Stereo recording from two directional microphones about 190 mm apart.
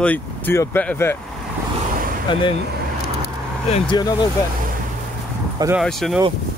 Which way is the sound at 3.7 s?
35° left (ahead or behind).